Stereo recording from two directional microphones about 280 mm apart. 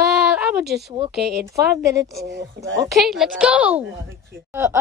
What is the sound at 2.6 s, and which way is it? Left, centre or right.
Speech, right.